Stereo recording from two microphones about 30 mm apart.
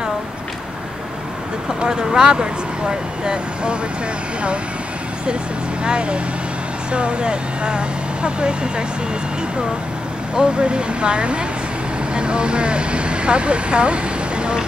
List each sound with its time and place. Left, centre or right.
1.8 s speech: right
5.9 s speech: right
10.3 s speech: right